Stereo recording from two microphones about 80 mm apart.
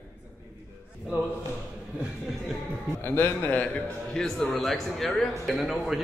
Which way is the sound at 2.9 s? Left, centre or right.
Left.